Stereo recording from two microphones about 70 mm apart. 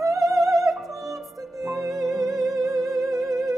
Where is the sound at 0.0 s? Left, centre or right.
Right.